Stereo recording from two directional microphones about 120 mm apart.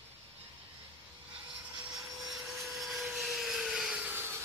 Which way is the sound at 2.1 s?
Centre (ahead or behind).